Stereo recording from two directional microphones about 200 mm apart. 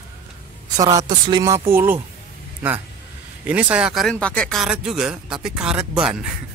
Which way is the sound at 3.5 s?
5° right (ahead or behind).